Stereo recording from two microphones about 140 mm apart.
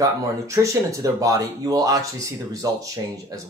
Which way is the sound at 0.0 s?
25° right (ahead or behind).